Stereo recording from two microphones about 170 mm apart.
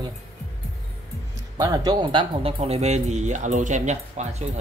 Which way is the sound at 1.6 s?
20° right (ahead or behind).